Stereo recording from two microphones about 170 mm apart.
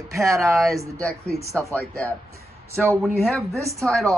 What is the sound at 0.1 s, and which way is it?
Speech, 20° right (ahead or behind).